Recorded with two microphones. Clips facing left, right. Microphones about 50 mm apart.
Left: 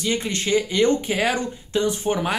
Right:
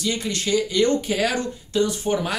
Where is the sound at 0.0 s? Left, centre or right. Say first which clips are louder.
Left 1 dB; left.